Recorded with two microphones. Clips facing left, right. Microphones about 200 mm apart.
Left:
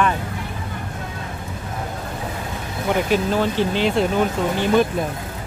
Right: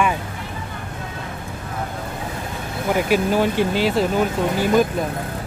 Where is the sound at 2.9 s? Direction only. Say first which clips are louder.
Right 1 dB; 10° right (ahead or behind).